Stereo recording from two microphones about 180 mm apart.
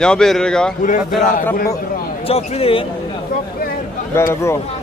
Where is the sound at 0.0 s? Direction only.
5° left (ahead or behind).